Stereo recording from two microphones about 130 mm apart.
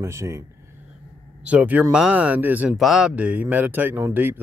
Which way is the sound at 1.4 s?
10° right (ahead or behind).